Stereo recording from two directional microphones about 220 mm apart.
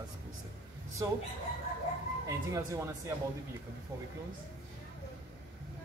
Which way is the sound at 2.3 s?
15° right (ahead or behind).